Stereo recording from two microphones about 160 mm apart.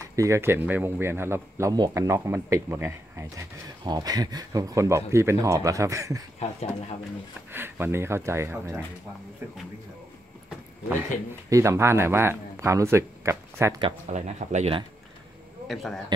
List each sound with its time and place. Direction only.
0.0 s speech: 20° right (ahead or behind)
6.4 s speech: 40° left (ahead or behind)
7.5 s speech: 15° right (ahead or behind)
11.5 s speech: 20° right (ahead or behind)
14.1 s speech: 45° right (ahead or behind)
15.6 s a man's voice: centre (ahead or behind)